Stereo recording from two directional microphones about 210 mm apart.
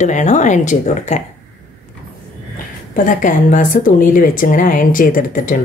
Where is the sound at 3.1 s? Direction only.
40° left (ahead or behind).